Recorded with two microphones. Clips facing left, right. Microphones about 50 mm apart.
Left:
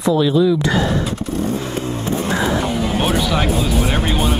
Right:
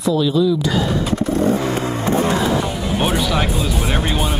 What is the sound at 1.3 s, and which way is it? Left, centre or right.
Vehicle, right.